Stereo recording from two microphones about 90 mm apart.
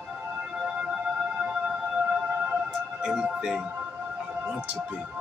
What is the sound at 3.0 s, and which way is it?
Speech, 10° right (ahead or behind).